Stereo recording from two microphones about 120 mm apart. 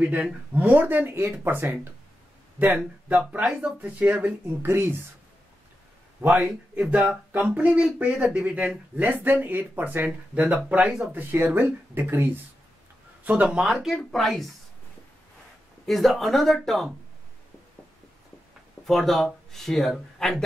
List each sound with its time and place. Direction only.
0.1 s speech: 10° right (ahead or behind)
2.8 s speech: centre (ahead or behind); by 4.9 s 20° right (ahead or behind)
6.2 s speech: 10° right (ahead or behind)
15.8 s speech: centre (ahead or behind)
18.9 s speech: centre (ahead or behind)